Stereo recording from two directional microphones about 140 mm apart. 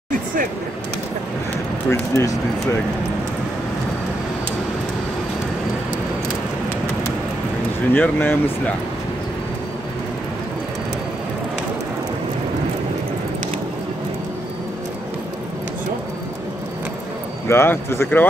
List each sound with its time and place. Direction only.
1.9 s speech: 20° left (ahead or behind)
7.9 s speech: 15° left (ahead or behind)
17.5 s speech: 15° left (ahead or behind)